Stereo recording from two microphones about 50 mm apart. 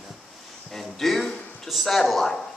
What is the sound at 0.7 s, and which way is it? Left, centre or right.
Speech, centre.